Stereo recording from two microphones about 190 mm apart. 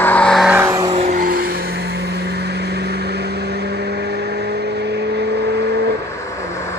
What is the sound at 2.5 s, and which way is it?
Vehicle, 60° right (ahead or behind).